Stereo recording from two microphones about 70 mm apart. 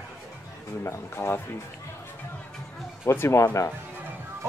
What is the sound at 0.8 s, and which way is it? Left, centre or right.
Speech, left.